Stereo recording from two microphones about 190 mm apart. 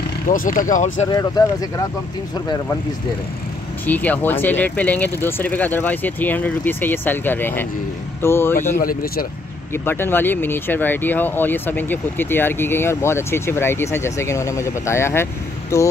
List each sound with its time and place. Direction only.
0.3 s speech: 45° left (ahead or behind)
1.1 s speech: 20° left (ahead or behind)
3.8 s speech: 10° left (ahead or behind)
8.7 s speech: 50° left (ahead or behind)
9.8 s speech: 10° left (ahead or behind)